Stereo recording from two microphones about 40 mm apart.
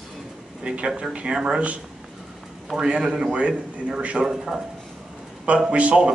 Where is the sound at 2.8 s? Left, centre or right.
Right.